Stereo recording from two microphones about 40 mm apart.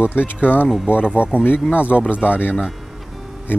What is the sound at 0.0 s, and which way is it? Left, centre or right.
Speech, left.